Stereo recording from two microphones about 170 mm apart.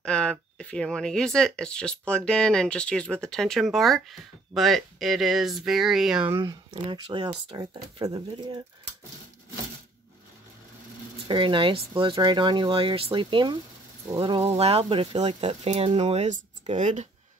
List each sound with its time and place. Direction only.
0.0 s speech: 5° left (ahead or behind)
6.7 s speech: 30° right (ahead or behind)
11.2 s speech: 30° right (ahead or behind)